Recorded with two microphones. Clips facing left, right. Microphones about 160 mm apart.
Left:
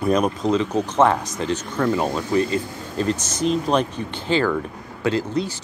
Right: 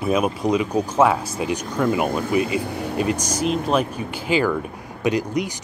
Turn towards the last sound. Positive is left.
turn(degrees=-15)  # may be behind; listen again after turning